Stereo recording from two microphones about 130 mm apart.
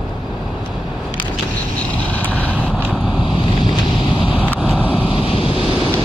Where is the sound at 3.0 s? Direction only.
35° left (ahead or behind).